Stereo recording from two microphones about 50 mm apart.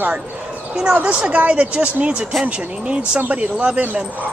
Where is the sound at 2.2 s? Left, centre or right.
Centre.